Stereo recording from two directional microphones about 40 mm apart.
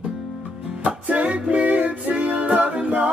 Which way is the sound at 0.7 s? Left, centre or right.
Right.